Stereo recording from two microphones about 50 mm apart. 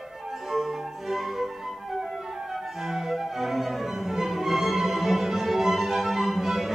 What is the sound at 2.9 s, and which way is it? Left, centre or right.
Music, centre.